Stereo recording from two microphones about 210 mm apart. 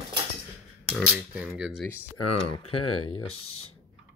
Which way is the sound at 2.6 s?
90° left.